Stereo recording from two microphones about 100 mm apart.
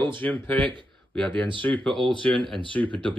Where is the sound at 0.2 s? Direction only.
20° left (ahead or behind).